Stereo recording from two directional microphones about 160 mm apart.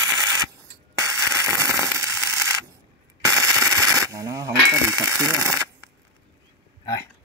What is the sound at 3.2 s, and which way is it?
Machine gun, 20° right (ahead or behind).